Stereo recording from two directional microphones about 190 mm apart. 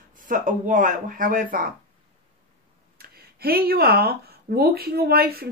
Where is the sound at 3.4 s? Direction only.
55° right (ahead or behind).